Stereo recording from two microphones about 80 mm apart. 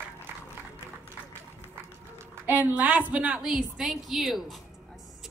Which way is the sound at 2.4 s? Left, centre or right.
Right.